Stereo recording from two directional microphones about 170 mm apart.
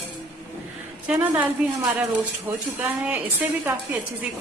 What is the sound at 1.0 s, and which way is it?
A woman's voice, 10° right (ahead or behind).